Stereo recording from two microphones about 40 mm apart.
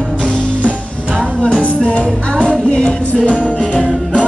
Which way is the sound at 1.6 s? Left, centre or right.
Left.